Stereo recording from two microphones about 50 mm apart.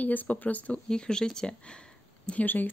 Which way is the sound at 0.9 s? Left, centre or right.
Centre.